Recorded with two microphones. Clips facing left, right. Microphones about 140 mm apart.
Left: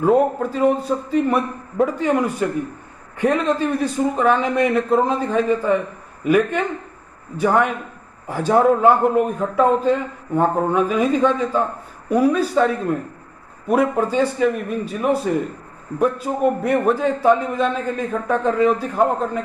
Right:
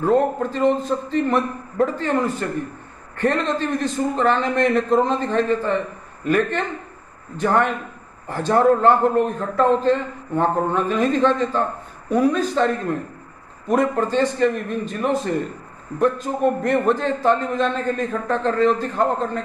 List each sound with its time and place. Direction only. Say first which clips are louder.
0.0 s a man's voice: left 2 dB; 10° left (ahead or behind)